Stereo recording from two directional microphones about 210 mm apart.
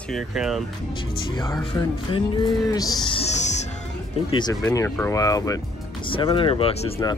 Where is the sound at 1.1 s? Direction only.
20° left (ahead or behind).